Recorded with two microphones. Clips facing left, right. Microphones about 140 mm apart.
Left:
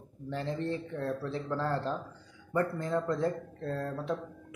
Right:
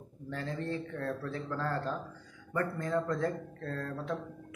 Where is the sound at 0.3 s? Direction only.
20° left (ahead or behind).